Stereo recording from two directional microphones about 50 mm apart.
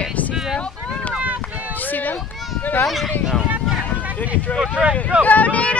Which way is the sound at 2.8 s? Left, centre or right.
Centre.